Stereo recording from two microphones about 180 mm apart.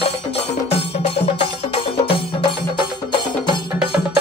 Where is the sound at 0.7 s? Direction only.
35° left (ahead or behind).